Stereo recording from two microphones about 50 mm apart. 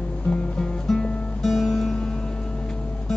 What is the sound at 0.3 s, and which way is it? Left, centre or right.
Music, centre.